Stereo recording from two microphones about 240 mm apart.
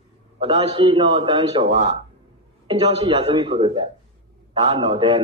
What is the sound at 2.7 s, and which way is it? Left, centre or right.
A man's voice, right.